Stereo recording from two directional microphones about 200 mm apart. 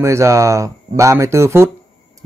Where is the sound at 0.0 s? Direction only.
15° right (ahead or behind).